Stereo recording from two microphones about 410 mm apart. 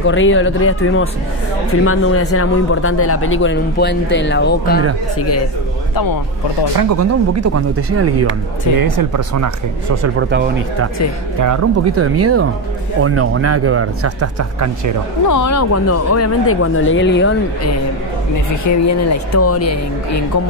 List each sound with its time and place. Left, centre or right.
0.0 s speech: left
6.9 s speech: right
8.7 s speech: right
10.1 s speech: right
11.3 s speech: right
15.2 s speech: left
18.6 s speech: left